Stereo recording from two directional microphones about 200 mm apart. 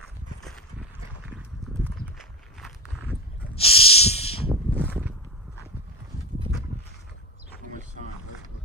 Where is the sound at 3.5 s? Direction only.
30° left (ahead or behind).